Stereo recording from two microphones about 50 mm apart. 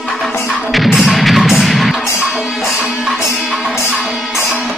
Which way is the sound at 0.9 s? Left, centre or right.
Centre.